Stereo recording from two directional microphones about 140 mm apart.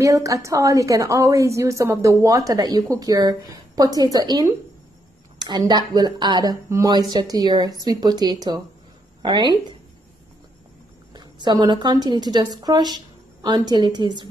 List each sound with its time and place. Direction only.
0.0 s a woman's voice: 25° right (ahead or behind)
11.1 s a woman's voice: 30° right (ahead or behind)